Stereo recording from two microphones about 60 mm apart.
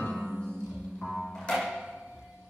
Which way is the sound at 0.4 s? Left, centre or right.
Centre.